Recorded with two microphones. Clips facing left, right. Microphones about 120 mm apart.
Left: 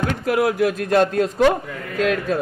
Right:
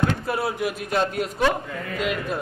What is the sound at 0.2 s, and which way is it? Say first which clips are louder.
Speech: left 7 dB; 90° left.